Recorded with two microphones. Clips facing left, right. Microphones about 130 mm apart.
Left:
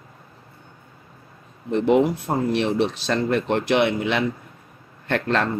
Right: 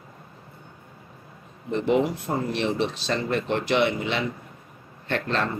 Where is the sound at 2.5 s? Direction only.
55° left (ahead or behind).